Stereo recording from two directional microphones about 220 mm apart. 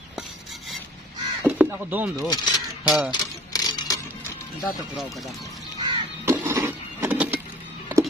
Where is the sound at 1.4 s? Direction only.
5° right (ahead or behind).